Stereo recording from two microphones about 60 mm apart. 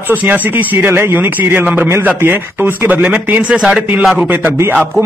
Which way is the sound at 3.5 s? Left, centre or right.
Centre.